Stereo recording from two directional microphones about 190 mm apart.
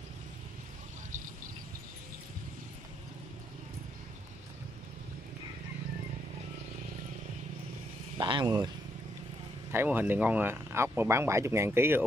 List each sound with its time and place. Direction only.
8.2 s speech: 25° right (ahead or behind)
9.7 s speech: 10° right (ahead or behind)